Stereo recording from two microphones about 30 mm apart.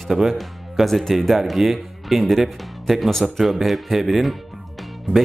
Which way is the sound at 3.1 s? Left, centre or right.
Centre.